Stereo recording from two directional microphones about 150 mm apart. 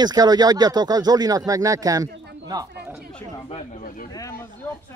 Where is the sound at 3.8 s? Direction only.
70° left (ahead or behind).